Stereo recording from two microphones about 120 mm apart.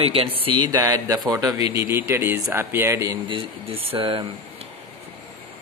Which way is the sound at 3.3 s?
45° right (ahead or behind).